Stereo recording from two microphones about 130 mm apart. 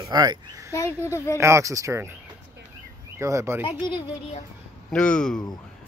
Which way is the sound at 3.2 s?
25° right (ahead or behind).